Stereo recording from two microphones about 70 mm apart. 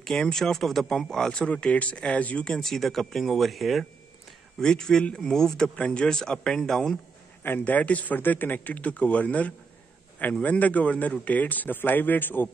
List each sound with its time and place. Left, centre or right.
0.0 s speech: centre
7.4 s speech: left